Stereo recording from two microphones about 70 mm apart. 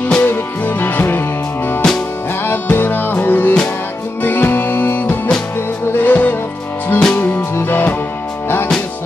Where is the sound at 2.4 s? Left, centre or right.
Left.